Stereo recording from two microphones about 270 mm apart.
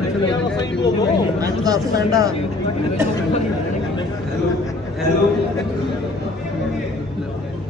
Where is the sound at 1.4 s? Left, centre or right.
Centre.